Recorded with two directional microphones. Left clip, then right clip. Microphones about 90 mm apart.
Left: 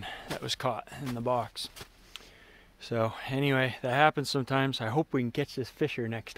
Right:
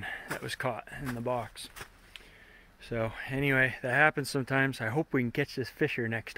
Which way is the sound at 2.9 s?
90° left.